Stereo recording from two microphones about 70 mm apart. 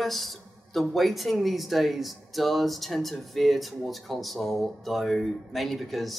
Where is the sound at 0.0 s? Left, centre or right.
Centre.